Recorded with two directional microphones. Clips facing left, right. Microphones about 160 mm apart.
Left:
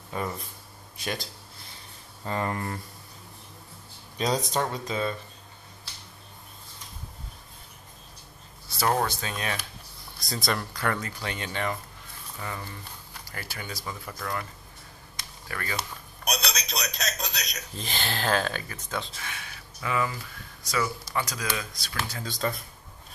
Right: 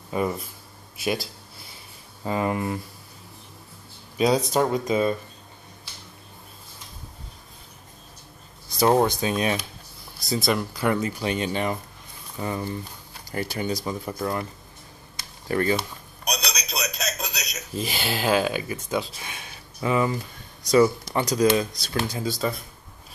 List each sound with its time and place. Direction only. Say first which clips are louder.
0.1 s speech: right 7 dB; 10° right (ahead or behind)
4.2 s speech: right 6 dB; 5° right (ahead or behind)
8.7 s speech: right 7 dB; 20° right (ahead or behind)
10.1 s speech: right 6 dB; 5° right (ahead or behind); by 14.4 s 25° right (ahead or behind)
15.4 s speech: right 13 dB; 30° right (ahead or behind)
16.3 s a sound: right 1 dB; centre (ahead or behind)
17.7 s speech: right 5 dB; 10° right (ahead or behind); by 20.2 s 25° right (ahead or behind)
21.5 s speech: right 12 dB; 25° right (ahead or behind)
22.1 s speech: right 4 dB; 10° right (ahead or behind)